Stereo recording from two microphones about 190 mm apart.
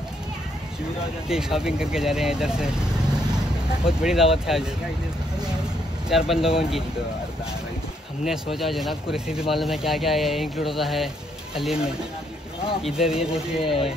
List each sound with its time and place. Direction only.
1.3 s speech: 5° right (ahead or behind)
3.8 s speech: 5° right (ahead or behind)
6.0 s speech: centre (ahead or behind)
8.3 s speech: centre (ahead or behind)
12.8 s speech: centre (ahead or behind)
13.6 s speech: 30° left (ahead or behind)